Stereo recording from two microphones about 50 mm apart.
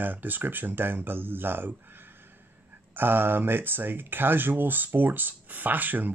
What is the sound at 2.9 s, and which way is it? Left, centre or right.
Speech, right.